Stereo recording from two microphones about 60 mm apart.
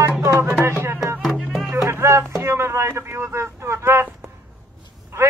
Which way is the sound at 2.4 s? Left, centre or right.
Right.